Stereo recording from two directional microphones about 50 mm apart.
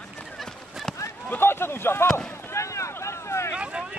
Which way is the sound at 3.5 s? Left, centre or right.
Right.